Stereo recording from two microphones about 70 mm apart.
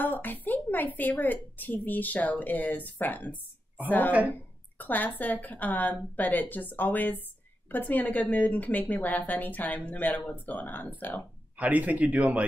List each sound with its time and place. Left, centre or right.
0.0 s a sound: left
1.2 s speech: left
11.5 s speech: right